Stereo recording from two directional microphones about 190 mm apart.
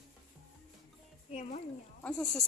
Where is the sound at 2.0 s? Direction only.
5° left (ahead or behind).